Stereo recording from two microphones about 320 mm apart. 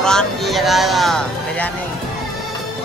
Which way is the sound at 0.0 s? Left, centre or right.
Centre.